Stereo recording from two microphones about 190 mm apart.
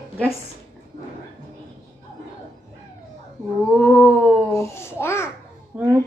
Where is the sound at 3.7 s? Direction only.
5° right (ahead or behind).